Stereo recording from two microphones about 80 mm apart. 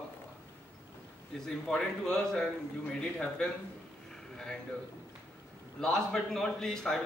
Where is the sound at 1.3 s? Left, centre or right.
Centre.